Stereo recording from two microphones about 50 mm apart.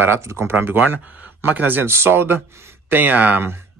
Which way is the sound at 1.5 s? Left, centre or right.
Right.